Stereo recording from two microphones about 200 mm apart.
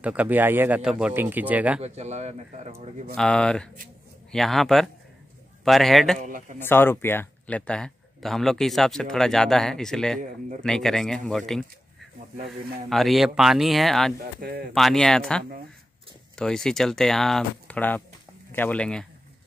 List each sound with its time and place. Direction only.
0.0 s speech: 5° right (ahead or behind)
1.8 s speech: 35° right (ahead or behind)
3.2 s speech: 5° left (ahead or behind)
6.1 s speech: 40° right (ahead or behind)
6.6 s speech: 10° left (ahead or behind)
12.9 s speech: centre (ahead or behind)
14.2 s speech: 45° right (ahead or behind)
14.7 s speech: centre (ahead or behind)